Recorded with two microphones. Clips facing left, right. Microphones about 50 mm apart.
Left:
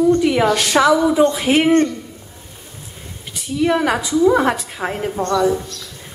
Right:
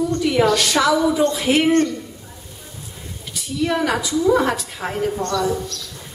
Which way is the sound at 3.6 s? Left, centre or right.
Left.